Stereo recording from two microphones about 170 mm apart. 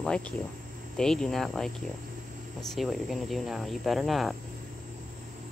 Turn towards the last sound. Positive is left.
turn(degrees=0)  # may be behind; listen again after turning